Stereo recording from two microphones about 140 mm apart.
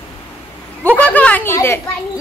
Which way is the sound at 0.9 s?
10° left (ahead or behind).